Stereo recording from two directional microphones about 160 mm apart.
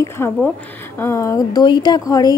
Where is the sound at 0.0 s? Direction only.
15° left (ahead or behind).